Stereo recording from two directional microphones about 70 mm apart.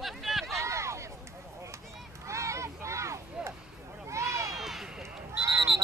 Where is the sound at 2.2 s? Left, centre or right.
Right.